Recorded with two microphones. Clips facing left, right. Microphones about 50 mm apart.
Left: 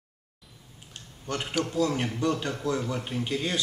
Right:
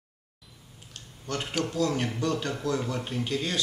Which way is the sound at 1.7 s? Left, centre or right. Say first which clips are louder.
Left 1 dB; centre.